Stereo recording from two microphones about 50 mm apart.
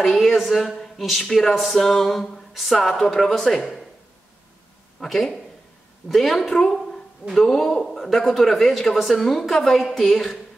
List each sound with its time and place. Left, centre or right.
0.0 s a man's voice: centre
5.0 s a woman's voice: centre